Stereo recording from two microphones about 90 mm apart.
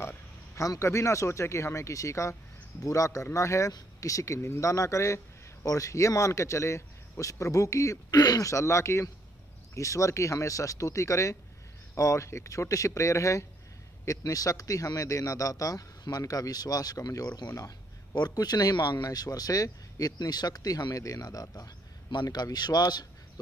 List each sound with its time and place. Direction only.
0.6 s a man's voice: 35° left (ahead or behind)